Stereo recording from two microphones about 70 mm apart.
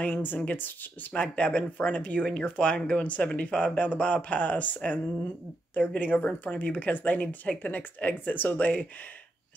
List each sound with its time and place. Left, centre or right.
0.0 s speech: left